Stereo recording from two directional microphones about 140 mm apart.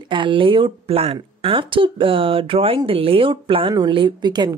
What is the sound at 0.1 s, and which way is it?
Speech, 35° right (ahead or behind).